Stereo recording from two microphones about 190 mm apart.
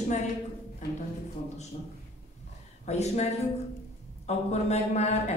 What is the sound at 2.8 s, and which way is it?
A man's voice, 35° left (ahead or behind).